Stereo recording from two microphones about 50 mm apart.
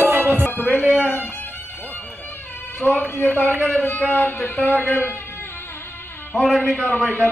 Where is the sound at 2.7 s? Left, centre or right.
Left.